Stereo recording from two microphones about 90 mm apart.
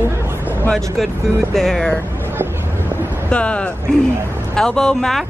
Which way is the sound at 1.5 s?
5° left (ahead or behind).